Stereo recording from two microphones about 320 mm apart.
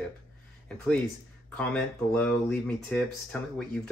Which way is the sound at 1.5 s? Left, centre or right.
Centre.